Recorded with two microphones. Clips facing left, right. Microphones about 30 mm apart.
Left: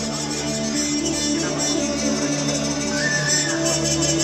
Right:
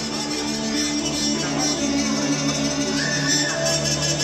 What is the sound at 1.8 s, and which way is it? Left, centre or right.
Music, centre.